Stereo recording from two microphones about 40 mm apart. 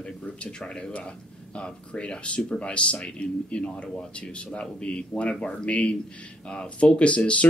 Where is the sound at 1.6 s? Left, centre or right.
Left.